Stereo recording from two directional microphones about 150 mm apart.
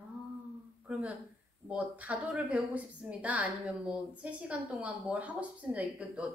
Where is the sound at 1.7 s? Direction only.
10° right (ahead or behind).